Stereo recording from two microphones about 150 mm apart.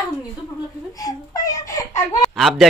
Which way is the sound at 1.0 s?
25° left (ahead or behind).